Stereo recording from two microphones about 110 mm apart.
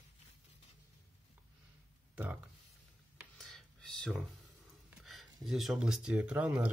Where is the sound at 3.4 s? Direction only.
5° left (ahead or behind).